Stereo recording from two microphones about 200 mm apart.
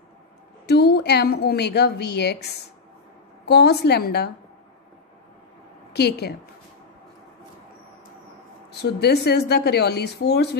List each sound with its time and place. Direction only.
0.7 s a woman's voice: 55° left (ahead or behind)
5.9 s a woman's voice: 55° left (ahead or behind)
8.8 s a woman's voice: 55° left (ahead or behind)